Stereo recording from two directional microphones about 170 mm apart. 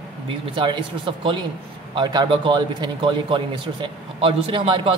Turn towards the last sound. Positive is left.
turn(degrees=-30)  # may be behind; listen again after turning